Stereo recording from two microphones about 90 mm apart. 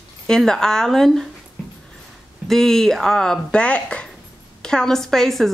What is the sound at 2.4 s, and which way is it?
Speech, 5° left (ahead or behind).